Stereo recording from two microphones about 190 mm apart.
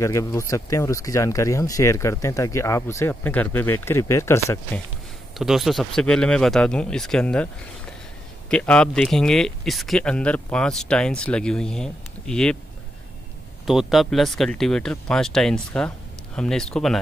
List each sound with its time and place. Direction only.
0.0 s speech: 15° left (ahead or behind)
5.4 s speech: centre (ahead or behind)
8.5 s speech: 5° left (ahead or behind)
13.7 s speech: centre (ahead or behind)